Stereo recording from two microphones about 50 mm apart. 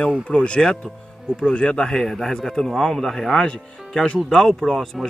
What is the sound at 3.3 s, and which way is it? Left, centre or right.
A man's voice, centre.